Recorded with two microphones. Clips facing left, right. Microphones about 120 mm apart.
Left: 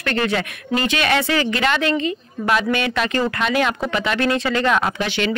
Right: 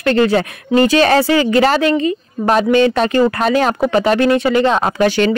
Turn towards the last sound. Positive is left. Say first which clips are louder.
# right 9 dB
turn(degrees=-40)  # may be behind; listen again after turning